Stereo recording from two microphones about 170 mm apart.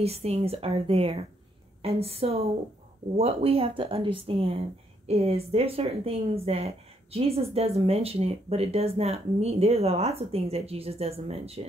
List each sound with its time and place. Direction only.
0.0 s speech: 35° right (ahead or behind)